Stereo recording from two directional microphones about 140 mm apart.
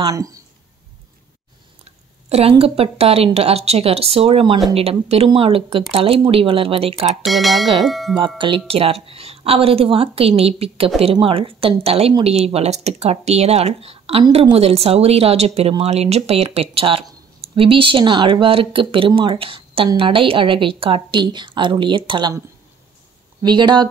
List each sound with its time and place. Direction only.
0.1 s speech: 25° right (ahead or behind)
1.9 s chewing: 45° right (ahead or behind)
2.6 s speech: 45° right (ahead or behind)
7.2 s speech: centre (ahead or behind)
8.4 s a woman's voice: 35° right (ahead or behind)
23.4 s a woman's voice: 30° right (ahead or behind)